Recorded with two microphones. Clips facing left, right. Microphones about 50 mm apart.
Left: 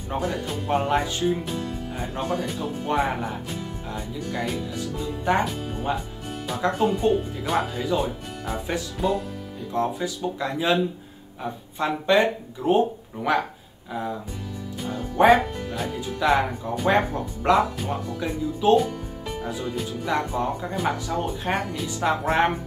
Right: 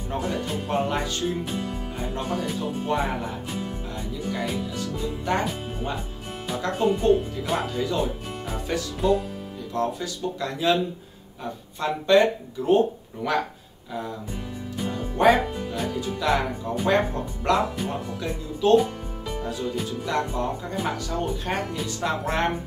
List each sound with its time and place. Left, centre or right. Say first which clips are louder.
0.1 s speech: left 1 dB; centre
6.6 s speech: left 5 dB; centre
7.0 s speech: right 2 dB; centre
15.1 s speech: left 2 dB; centre
15.9 s speech: left 3 dB; centre